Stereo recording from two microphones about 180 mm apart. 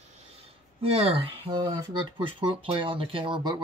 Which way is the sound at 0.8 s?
30° right (ahead or behind).